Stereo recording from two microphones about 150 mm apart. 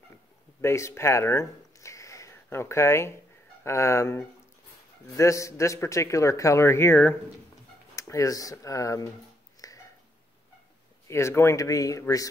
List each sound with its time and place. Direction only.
0.6 s a man's voice: 20° left (ahead or behind)
9.6 s a sound: 25° left (ahead or behind)
11.1 s a man's voice: 20° left (ahead or behind)